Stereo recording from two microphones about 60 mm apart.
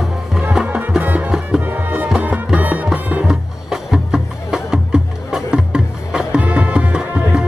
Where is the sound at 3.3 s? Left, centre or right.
Centre.